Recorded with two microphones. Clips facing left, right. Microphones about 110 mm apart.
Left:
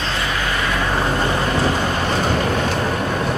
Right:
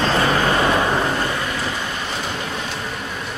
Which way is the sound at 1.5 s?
50° left (ahead or behind).